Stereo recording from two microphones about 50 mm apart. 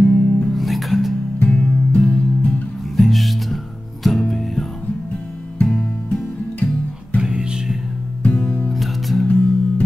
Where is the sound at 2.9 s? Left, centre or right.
Centre.